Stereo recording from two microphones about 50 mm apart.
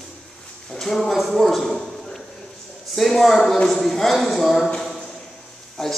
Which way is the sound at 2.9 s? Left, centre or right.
Centre.